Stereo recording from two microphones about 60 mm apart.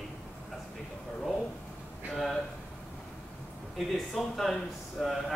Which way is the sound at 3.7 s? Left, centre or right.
Centre.